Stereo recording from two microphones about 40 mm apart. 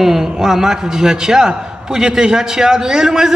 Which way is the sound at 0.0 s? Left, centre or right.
Centre.